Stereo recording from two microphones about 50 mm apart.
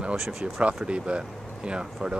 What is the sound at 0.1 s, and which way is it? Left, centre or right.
Speech, centre.